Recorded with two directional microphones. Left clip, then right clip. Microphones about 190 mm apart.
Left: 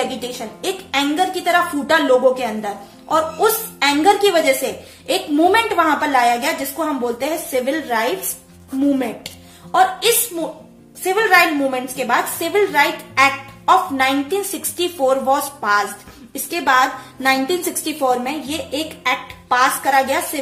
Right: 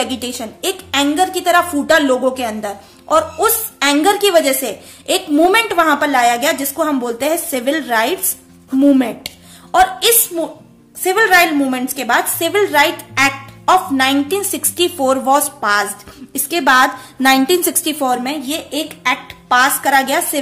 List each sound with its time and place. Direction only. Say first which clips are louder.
0.0 s a woman's voice: right 2 dB; 45° right (ahead or behind)